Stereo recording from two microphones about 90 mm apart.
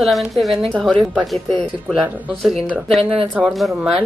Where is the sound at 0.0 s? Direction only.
Centre (ahead or behind).